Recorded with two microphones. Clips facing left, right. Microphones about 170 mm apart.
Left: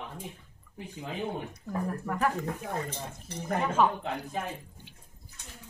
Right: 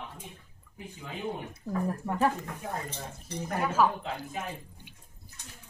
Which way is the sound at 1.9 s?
25° right (ahead or behind).